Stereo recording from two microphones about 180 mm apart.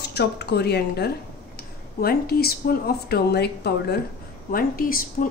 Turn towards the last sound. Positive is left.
turn(degrees=50)  # may be behind; listen again after turning